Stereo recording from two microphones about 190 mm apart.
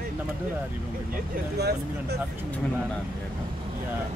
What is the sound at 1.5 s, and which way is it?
Speech, 60° right (ahead or behind).